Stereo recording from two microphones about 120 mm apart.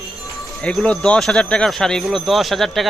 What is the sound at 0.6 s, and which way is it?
Speech, 5° left (ahead or behind).